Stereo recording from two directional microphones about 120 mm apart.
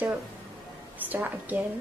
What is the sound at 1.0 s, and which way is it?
Speech, 15° right (ahead or behind).